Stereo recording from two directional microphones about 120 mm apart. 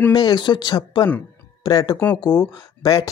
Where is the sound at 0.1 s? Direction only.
40° left (ahead or behind).